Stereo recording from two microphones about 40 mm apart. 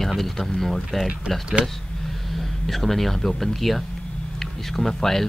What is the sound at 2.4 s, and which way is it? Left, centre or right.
Speech, centre.